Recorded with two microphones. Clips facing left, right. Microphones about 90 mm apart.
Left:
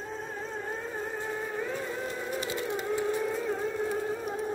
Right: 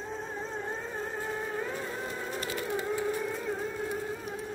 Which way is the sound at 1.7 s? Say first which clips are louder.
Left 2 dB; 10° right (ahead or behind).